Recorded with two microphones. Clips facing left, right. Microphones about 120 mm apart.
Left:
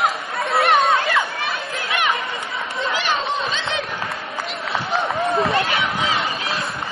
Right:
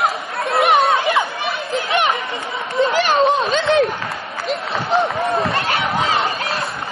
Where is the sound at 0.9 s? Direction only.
20° right (ahead or behind).